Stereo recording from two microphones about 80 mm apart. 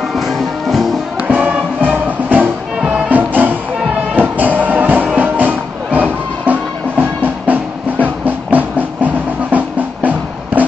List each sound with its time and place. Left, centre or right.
1.2 s music: centre